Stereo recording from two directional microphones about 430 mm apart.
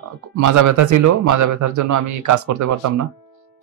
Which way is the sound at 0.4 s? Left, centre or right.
Right.